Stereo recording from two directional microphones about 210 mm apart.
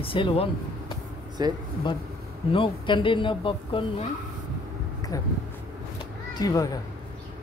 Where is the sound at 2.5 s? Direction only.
25° left (ahead or behind).